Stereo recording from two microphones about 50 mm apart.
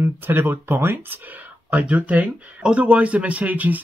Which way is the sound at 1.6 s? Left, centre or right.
Right.